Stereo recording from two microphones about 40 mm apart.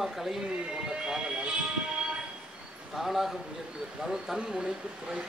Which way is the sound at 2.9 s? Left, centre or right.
Centre.